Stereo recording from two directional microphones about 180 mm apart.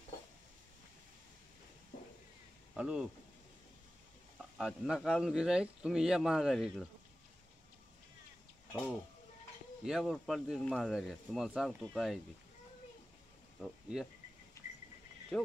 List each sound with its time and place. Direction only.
2.7 s speech: 5° right (ahead or behind)
4.4 s speech: centre (ahead or behind)
9.8 s speech: centre (ahead or behind)
13.6 s speech: 5° right (ahead or behind)
14.6 s a sound: 15° left (ahead or behind)
15.3 s speech: 5° left (ahead or behind)